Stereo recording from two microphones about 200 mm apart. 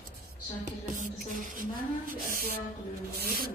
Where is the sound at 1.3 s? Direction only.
40° right (ahead or behind).